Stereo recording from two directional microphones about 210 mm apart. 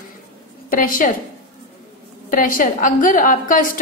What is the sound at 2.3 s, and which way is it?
A woman's voice, 40° left (ahead or behind).